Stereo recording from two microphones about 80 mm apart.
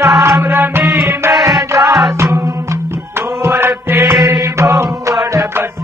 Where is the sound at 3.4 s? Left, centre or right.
Right.